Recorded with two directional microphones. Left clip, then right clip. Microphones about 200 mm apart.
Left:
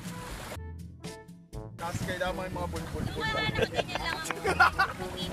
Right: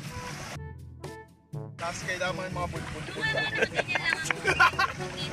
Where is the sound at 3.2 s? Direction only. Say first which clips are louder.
Right 2 dB; 15° left (ahead or behind).